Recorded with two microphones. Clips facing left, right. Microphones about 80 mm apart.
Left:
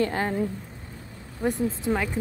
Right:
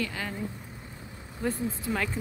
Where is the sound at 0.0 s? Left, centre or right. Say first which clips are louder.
Left 8 dB; left.